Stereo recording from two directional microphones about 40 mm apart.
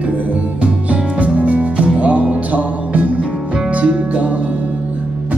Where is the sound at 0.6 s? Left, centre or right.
Right.